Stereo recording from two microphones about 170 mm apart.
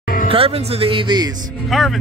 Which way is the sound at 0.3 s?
35° right (ahead or behind).